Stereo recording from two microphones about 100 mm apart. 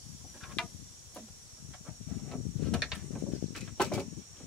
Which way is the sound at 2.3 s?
Centre (ahead or behind).